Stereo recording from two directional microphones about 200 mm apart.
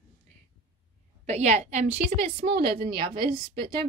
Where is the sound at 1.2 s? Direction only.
35° right (ahead or behind).